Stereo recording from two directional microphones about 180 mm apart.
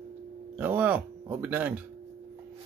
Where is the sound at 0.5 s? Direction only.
10° right (ahead or behind).